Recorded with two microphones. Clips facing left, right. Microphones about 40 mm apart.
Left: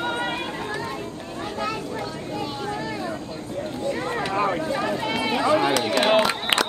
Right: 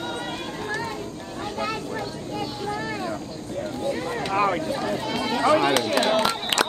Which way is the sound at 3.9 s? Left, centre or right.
Left.